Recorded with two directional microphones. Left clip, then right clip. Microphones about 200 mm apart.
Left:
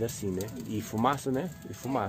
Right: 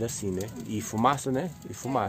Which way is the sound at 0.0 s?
15° right (ahead or behind).